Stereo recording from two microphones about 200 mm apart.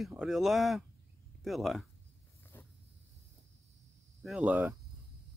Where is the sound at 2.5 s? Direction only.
10° left (ahead or behind).